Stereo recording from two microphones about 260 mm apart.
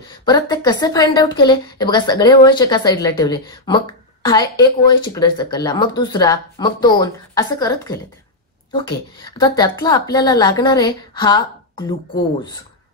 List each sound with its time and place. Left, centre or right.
0.2 s a woman's voice: centre
9.2 s a woman's voice: centre